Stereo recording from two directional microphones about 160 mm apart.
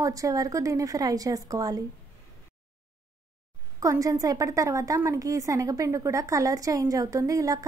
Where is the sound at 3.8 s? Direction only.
20° right (ahead or behind).